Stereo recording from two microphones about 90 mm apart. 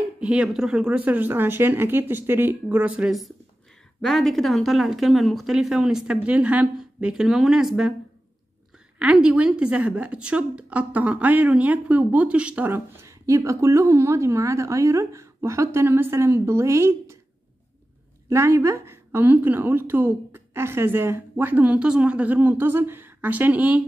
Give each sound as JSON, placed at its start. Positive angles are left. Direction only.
{"t": 0.2, "sound": "a woman's voice", "side_deg": -10}
{"t": 4.0, "sound": "speech", "side_deg": 5}
{"t": 8.9, "sound": "a woman's voice", "side_deg": -10}
{"t": 13.0, "sound": "a woman's voice", "side_deg": -35}
{"t": 18.3, "sound": "a woman's voice", "side_deg": -30}